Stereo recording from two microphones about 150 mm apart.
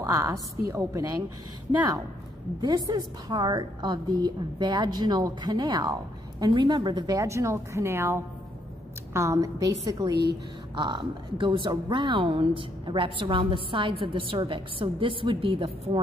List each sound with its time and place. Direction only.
0.0 s a woman's voice: 20° right (ahead or behind)
2.6 s a woman's voice: 30° right (ahead or behind)